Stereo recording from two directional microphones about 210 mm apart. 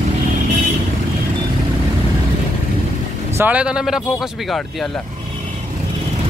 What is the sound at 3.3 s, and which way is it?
Speech, 5° right (ahead or behind).